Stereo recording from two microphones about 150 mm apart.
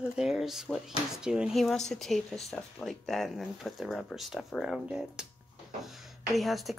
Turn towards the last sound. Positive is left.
turn(degrees=0)  # may be behind; listen again after turning